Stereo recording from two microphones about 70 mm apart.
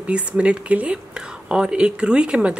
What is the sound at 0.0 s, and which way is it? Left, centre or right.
A woman's voice, centre.